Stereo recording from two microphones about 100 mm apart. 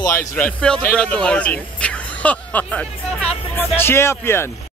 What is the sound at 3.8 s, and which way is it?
Speech, 25° left (ahead or behind).